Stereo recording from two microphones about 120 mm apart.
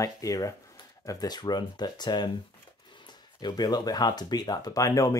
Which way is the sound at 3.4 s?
35° left (ahead or behind).